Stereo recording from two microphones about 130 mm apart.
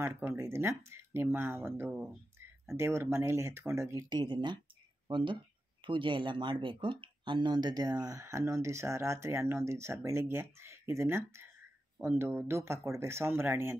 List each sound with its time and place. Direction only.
0.0 s speech: 20° right (ahead or behind)
4.1 s speech: 35° right (ahead or behind); by 13.7 s 20° right (ahead or behind)